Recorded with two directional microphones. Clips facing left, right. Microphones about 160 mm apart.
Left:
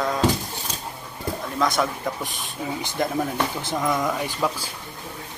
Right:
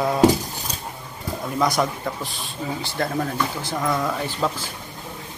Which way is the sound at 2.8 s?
15° left (ahead or behind).